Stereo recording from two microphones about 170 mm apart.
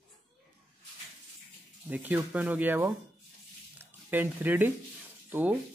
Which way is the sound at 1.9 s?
10° right (ahead or behind).